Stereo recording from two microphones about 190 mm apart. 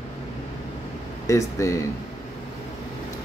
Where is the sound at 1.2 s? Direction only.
15° left (ahead or behind).